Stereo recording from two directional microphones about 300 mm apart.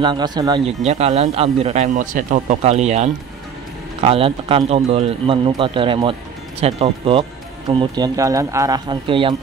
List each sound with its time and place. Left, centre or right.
0.0 s a man's voice: centre